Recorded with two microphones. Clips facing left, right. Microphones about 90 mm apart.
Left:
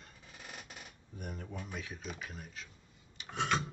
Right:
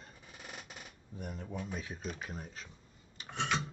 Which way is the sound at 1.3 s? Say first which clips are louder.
Right 2 dB; 20° right (ahead or behind).